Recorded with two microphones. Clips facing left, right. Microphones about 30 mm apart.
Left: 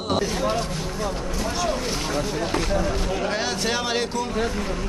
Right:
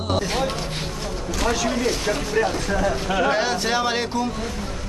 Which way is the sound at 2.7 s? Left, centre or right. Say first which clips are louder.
Right 2 dB; right.